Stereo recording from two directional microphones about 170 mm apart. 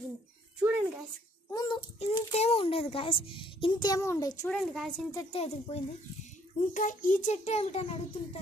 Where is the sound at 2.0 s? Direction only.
35° left (ahead or behind); by 4.5 s 20° left (ahead or behind).